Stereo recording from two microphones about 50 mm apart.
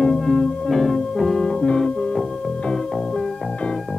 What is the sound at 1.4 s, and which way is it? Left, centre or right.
Music, centre.